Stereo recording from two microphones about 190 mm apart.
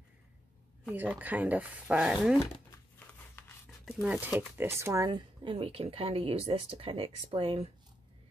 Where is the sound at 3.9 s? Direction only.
5° right (ahead or behind); by 7.7 s 30° right (ahead or behind).